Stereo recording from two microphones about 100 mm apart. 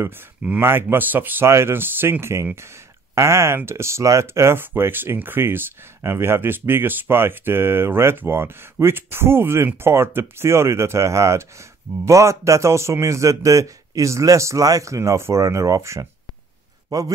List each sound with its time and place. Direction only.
0.4 s a man's voice: 15° right (ahead or behind); by 17.1 s 40° right (ahead or behind)